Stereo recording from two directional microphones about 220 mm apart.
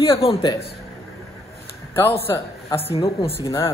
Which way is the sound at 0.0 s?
25° left (ahead or behind).